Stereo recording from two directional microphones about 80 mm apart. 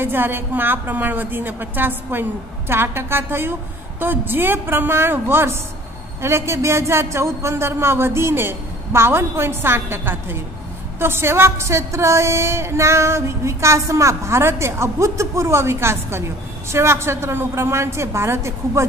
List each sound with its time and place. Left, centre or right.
0.0 s a woman's voice: right